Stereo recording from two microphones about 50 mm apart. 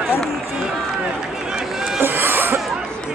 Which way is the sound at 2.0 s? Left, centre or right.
Right.